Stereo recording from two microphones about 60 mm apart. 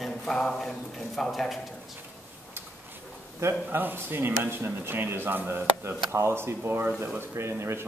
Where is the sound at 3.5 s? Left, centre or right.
Right.